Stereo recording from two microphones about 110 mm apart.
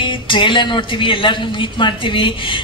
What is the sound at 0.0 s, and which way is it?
A woman's voice, 45° left (ahead or behind).